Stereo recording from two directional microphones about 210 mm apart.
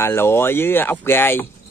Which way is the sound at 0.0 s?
10° left (ahead or behind).